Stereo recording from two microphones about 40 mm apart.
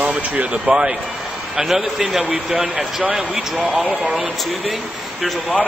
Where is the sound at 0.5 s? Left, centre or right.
Right.